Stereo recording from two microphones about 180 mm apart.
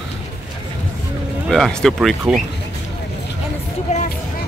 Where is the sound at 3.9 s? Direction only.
40° left (ahead or behind).